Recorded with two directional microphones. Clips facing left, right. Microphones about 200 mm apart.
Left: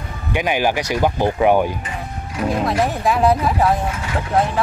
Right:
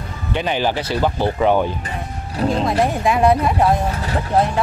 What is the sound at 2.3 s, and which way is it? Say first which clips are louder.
Speech: right 2 dB; 30° right (ahead or behind).